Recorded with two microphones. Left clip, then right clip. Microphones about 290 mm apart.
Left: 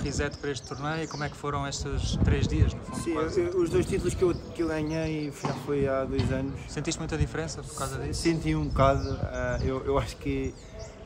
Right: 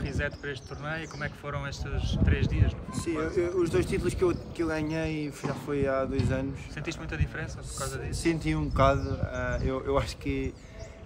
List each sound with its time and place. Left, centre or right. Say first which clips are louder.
0.1 s speech: left 1 dB; centre
3.0 s speech: left 1 dB; centre
6.7 s speech: left 4 dB; centre
8.2 s speech: left 1 dB; centre